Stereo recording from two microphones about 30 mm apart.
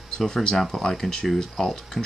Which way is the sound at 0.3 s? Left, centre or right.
Left.